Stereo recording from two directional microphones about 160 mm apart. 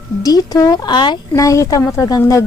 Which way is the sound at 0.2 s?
25° left (ahead or behind).